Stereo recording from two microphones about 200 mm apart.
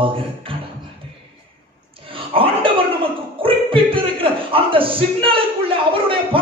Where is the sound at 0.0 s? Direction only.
25° right (ahead or behind).